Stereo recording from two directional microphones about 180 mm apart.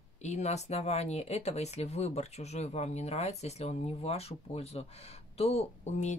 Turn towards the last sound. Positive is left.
turn(degrees=40)  # may be behind; listen again after turning